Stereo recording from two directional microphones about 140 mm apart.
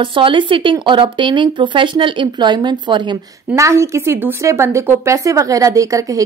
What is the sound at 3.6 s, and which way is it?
A woman's voice, 20° right (ahead or behind).